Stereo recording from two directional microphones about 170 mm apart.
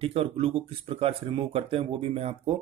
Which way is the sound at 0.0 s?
35° right (ahead or behind).